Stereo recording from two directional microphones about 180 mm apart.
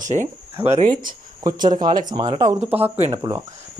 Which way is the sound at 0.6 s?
10° right (ahead or behind).